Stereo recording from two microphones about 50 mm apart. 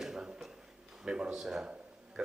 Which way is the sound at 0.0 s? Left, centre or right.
Centre.